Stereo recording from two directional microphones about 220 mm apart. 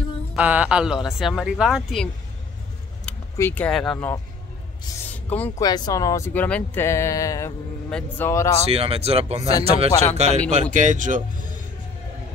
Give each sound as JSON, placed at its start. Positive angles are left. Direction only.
{"t": 0.4, "sound": "speech", "side_deg": -5}
{"t": 3.1, "sound": "speech", "side_deg": 10}
{"t": 5.1, "sound": "speech", "side_deg": 5}
{"t": 5.7, "sound": "speech", "side_deg": 15}
{"t": 8.6, "sound": "speech", "side_deg": -25}